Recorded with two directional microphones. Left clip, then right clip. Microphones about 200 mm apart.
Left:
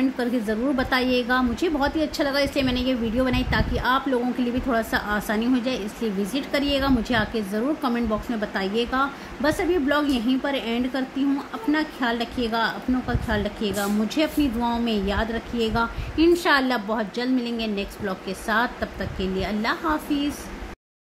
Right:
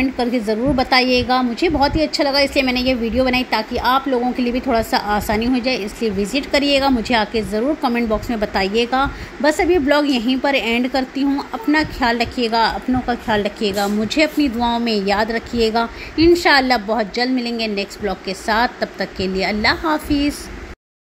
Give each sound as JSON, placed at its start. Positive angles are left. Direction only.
{"t": 0.2, "sound": "a woman's voice", "side_deg": -15}